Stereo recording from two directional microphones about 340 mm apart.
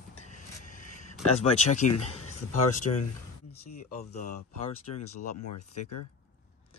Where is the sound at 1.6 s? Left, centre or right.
Centre.